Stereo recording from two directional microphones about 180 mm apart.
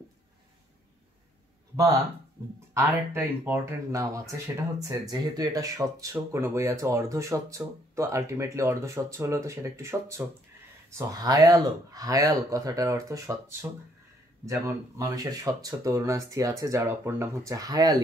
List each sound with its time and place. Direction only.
2.4 s speech: 15° right (ahead or behind)